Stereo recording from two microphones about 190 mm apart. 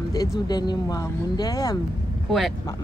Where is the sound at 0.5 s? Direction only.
20° left (ahead or behind).